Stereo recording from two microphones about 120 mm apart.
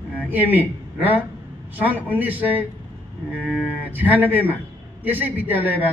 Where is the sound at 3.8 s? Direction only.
15° right (ahead or behind).